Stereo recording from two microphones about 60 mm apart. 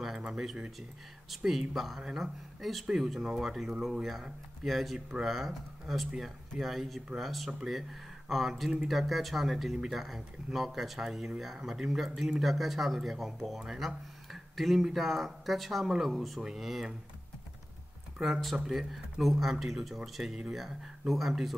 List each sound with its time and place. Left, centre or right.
0.2 s speech: centre
18.2 s speech: centre